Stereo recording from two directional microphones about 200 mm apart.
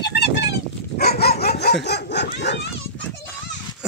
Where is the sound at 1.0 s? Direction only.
50° left (ahead or behind).